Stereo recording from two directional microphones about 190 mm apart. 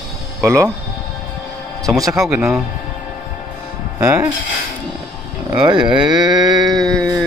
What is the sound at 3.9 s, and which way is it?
Speech, 15° right (ahead or behind).